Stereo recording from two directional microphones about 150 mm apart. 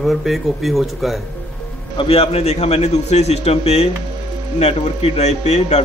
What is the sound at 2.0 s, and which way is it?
Speech, 40° left (ahead or behind).